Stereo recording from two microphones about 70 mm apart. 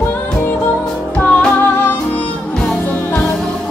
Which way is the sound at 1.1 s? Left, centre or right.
Centre.